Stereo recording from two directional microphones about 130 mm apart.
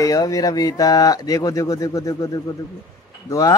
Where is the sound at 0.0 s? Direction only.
25° left (ahead or behind).